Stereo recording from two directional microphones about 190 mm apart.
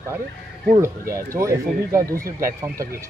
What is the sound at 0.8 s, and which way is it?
Speech, 15° right (ahead or behind).